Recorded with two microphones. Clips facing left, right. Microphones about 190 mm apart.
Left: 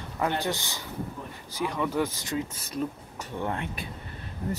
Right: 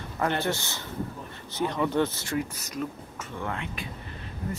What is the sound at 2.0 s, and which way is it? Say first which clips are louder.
Speech: right 2 dB; 15° left (ahead or behind).